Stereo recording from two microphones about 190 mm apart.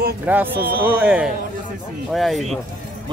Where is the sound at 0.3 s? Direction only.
10° right (ahead or behind).